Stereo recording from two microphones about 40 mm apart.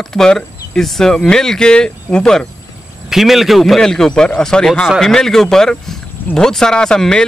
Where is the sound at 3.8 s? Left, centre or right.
Centre.